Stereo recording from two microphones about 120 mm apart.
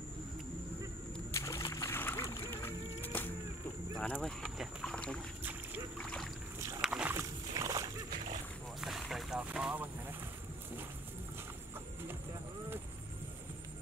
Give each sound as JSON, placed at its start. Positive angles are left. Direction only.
{"t": 1.3, "sound": "splash", "side_deg": 25}
{"t": 4.0, "sound": "speech", "side_deg": 10}
{"t": 4.8, "sound": "boat", "side_deg": 5}
{"t": 5.4, "sound": "boat", "side_deg": -15}
{"t": 5.9, "sound": "boat", "side_deg": 5}
{"t": 6.8, "sound": "rowboat", "side_deg": -10}
{"t": 7.2, "sound": "a sound", "side_deg": -25}
{"t": 9.0, "sound": "vehicle", "side_deg": 0}